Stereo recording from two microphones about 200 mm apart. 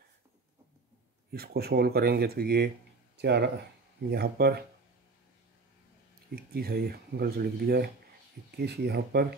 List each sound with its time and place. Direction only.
1.3 s speech: 50° right (ahead or behind)
6.3 s speech: 50° right (ahead or behind)